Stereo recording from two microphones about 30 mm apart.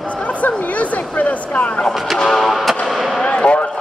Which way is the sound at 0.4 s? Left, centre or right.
Left.